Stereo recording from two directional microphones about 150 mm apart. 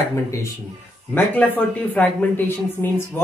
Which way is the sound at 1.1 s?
10° left (ahead or behind).